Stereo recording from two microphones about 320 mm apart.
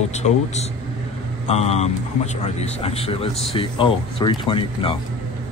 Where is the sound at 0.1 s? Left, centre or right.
Left.